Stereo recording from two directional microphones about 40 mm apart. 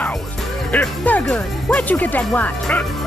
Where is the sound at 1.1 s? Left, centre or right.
Left.